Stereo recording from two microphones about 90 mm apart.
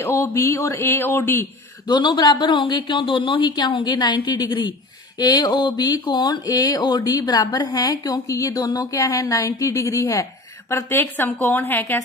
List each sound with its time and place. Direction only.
0.0 s speech: 35° left (ahead or behind)
1.9 s a man's voice: 50° left (ahead or behind)
5.2 s a woman's voice: 50° left (ahead or behind)
10.7 s speech: 25° left (ahead or behind)